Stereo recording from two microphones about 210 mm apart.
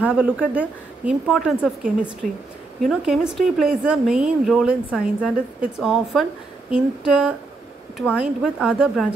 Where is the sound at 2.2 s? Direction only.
40° right (ahead or behind).